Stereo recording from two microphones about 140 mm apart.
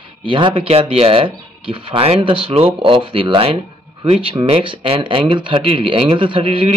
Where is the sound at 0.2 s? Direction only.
35° right (ahead or behind).